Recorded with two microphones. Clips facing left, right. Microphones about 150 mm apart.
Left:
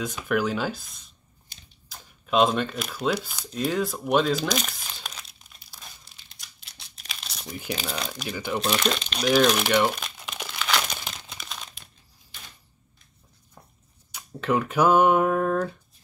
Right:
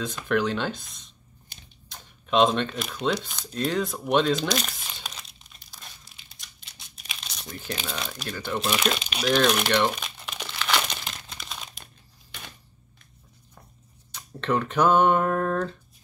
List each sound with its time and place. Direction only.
0.0 s speech: 10° left (ahead or behind)
6.6 s crumpling: centre (ahead or behind)
7.7 s speech: centre (ahead or behind)
8.3 s speech: 10° left (ahead or behind)
8.5 s crumpling: 5° right (ahead or behind)
14.1 s speech: 5° left (ahead or behind)